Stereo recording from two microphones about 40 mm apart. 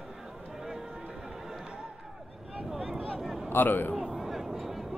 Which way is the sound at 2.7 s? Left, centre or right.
Centre.